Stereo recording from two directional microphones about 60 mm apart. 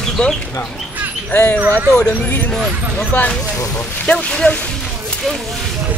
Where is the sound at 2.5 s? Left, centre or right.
Centre.